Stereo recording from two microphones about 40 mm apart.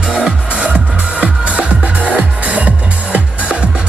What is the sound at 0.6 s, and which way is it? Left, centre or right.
Music, right.